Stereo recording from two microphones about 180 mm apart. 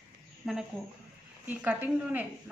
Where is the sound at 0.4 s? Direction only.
Centre (ahead or behind).